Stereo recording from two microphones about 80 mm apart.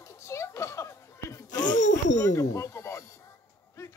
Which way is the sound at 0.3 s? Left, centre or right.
Left.